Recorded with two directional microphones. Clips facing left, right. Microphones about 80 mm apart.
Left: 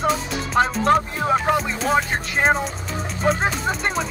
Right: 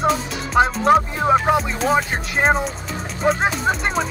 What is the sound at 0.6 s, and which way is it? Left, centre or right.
Music, centre.